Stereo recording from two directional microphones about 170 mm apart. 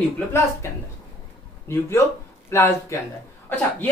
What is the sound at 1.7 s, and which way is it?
A woman's voice, 15° left (ahead or behind).